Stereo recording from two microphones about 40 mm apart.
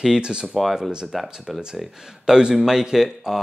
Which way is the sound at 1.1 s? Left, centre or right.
Centre.